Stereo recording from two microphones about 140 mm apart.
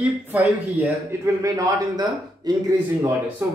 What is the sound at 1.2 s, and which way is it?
A man's voice, 25° right (ahead or behind).